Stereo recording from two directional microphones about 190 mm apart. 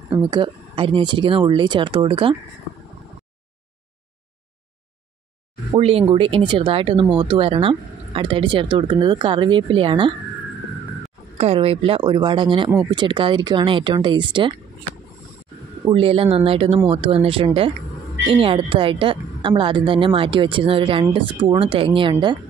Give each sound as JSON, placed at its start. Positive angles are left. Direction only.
{"t": 0.1, "sound": "speech", "side_deg": -25}
{"t": 5.8, "sound": "speech", "side_deg": -30}
{"t": 11.3, "sound": "speech", "side_deg": -30}
{"t": 15.9, "sound": "speech", "side_deg": -30}